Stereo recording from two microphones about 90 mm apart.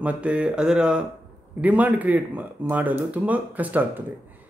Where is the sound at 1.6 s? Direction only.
20° right (ahead or behind).